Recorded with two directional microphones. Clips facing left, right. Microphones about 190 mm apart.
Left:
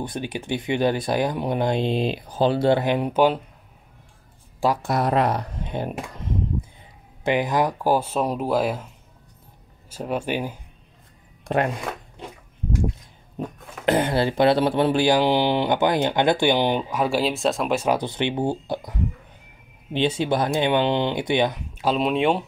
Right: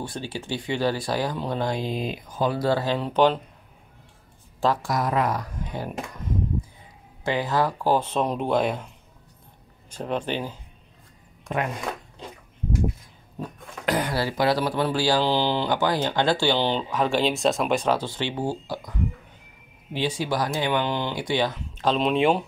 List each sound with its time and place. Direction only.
0.0 s speech: 20° left (ahead or behind)
4.8 s speech: 30° left (ahead or behind)
7.2 s speech: 15° left (ahead or behind)
9.8 s speech: 5° left (ahead or behind)
11.4 s speech: 35° left (ahead or behind)
13.4 s speech: 25° left (ahead or behind); by 17.8 s centre (ahead or behind)
17.8 s speech: 20° left (ahead or behind); by 22.4 s centre (ahead or behind)